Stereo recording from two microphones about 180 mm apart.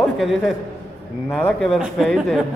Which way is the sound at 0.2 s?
Centre (ahead or behind).